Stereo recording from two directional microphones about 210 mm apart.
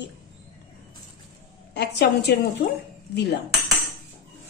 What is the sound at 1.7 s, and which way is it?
Speech, 55° left (ahead or behind).